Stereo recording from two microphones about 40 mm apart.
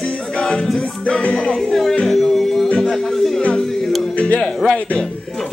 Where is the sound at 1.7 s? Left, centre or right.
Centre.